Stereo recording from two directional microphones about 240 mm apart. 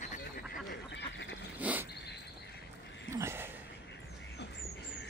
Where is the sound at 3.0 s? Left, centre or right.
Centre.